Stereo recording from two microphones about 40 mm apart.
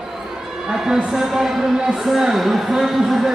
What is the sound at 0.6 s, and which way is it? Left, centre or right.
A man's voice, centre.